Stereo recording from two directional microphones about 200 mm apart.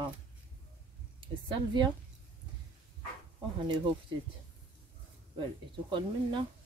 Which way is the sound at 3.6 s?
20° right (ahead or behind).